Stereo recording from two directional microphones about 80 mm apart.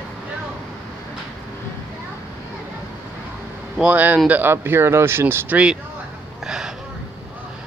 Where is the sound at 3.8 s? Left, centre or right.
Centre.